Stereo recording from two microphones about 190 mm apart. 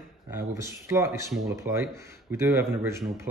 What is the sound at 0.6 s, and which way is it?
Speech, 15° right (ahead or behind).